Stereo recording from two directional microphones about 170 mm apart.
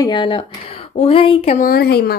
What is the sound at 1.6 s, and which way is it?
Speech, 60° left (ahead or behind).